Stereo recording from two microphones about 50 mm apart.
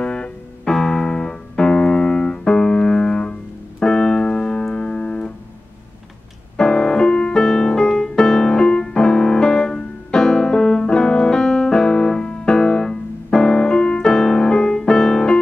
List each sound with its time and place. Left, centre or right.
0.0 s music: centre
0.7 s piano: centre
6.5 s music: centre